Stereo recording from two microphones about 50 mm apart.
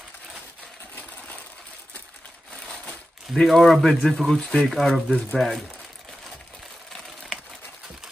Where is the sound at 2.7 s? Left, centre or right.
Left.